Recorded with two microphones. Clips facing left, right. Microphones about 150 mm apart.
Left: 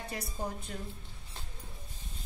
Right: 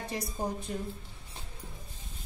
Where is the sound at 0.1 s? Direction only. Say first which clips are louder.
Right 5 dB; 20° right (ahead or behind).